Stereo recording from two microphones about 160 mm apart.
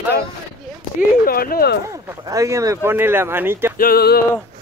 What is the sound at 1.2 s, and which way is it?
Speech, 70° left (ahead or behind).